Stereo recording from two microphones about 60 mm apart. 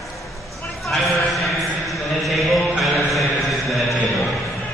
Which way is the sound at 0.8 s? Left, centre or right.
Centre.